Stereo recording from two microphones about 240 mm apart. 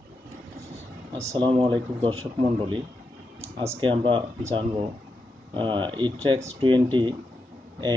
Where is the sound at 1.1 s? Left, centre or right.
Right.